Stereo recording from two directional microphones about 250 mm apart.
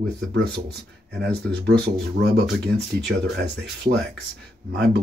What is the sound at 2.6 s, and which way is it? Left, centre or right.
Speech, right.